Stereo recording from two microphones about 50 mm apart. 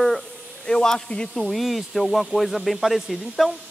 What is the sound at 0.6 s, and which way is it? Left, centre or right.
Speech, centre.